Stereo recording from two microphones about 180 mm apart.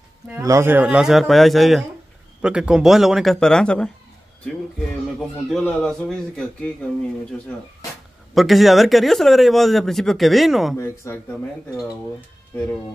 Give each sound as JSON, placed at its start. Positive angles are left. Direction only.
{"t": 0.4, "sound": "speech", "side_deg": -15}
{"t": 5.5, "sound": "speech", "side_deg": 5}
{"t": 8.4, "sound": "speech", "side_deg": 0}
{"t": 11.1, "sound": "speech", "side_deg": 15}